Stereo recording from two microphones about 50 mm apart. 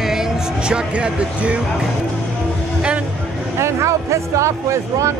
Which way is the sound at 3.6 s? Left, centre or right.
Right.